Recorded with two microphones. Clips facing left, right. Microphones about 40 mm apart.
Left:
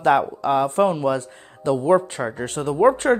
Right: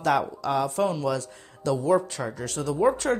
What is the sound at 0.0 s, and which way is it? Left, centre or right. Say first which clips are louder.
A man's voice: left 6 dB; left.